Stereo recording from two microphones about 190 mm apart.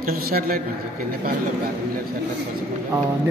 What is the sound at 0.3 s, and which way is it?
Speech, 50° right (ahead or behind).